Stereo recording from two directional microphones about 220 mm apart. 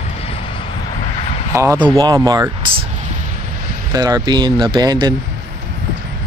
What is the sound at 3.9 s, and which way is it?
Speech, 15° right (ahead or behind).